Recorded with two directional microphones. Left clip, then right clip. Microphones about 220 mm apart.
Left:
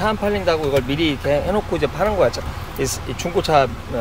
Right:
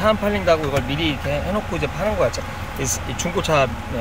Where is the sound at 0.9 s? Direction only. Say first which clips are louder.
Left 4 dB; 15° left (ahead or behind).